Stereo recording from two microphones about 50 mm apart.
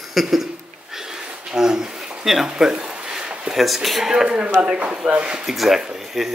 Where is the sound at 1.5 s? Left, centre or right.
Centre.